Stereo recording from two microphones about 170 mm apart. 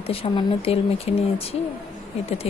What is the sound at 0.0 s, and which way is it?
Speech, 35° left (ahead or behind).